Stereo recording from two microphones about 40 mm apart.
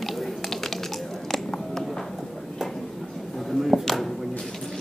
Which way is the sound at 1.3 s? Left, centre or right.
Centre.